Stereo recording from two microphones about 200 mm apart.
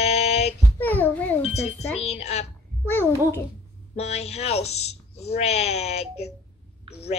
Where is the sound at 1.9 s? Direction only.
30° left (ahead or behind).